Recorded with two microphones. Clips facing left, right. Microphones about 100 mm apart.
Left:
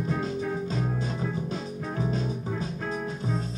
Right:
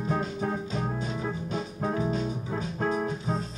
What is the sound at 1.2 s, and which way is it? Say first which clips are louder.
Music: even; 40° right (ahead or behind).